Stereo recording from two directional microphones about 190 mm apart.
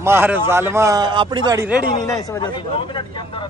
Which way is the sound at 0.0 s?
10° right (ahead or behind).